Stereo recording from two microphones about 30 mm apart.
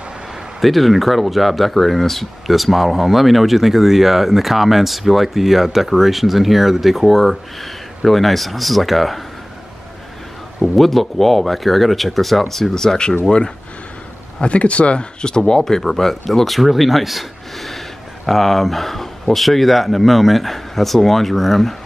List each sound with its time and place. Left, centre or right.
0.6 s speech: centre
10.8 s speech: centre
12.7 s speech: centre
14.4 s speech: left; by 15.8 s centre
15.8 s speech: centre